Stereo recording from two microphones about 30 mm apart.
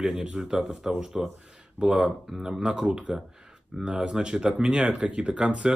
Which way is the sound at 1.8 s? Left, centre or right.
Right.